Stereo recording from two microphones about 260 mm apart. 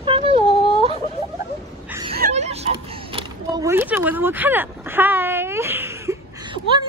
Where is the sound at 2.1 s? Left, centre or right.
Right.